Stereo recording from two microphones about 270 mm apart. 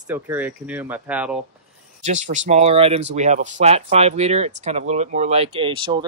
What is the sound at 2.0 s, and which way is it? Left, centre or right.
Speech, right.